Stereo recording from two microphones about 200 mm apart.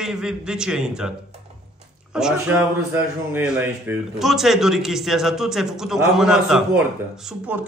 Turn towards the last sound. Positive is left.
turn(degrees=-10)  # may be behind; listen again after turning